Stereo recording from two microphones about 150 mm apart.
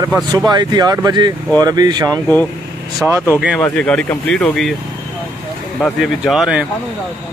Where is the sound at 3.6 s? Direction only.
10° left (ahead or behind).